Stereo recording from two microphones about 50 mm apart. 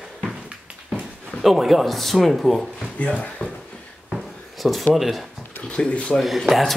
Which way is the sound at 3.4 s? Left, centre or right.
Left.